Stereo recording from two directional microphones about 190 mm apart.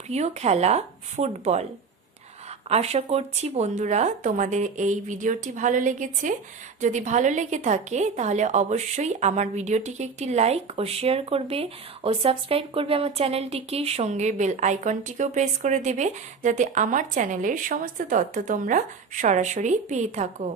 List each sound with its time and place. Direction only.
0.1 s a woman's voice: 35° right (ahead or behind)
2.7 s a woman's voice: 35° right (ahead or behind)